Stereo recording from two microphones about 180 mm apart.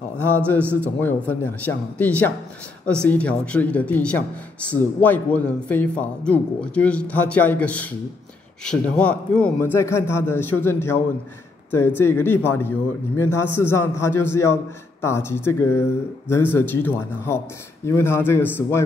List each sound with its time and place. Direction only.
0.5 s speech: 10° left (ahead or behind)